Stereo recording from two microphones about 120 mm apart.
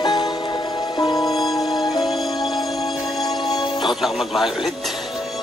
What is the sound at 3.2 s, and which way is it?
Music, 35° left (ahead or behind).